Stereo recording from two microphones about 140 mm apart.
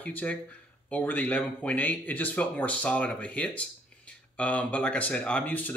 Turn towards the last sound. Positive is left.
turn(degrees=10)  # may be behind; listen again after turning